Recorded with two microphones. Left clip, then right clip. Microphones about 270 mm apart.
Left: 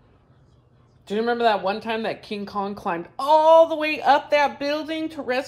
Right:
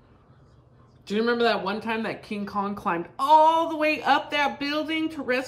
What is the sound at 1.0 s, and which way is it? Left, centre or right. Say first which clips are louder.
Speech: left 1 dB; centre.